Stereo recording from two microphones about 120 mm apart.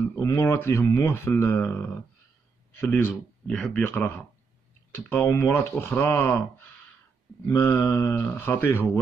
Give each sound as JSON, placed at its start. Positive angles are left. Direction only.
{"t": 0.2, "sound": "speech", "side_deg": 20}
{"t": 7.4, "sound": "speech", "side_deg": 15}